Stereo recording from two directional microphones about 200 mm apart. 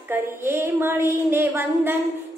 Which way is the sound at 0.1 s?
10° right (ahead or behind).